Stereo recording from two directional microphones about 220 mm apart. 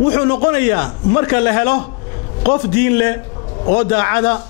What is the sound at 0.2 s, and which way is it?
A man's voice, 20° left (ahead or behind).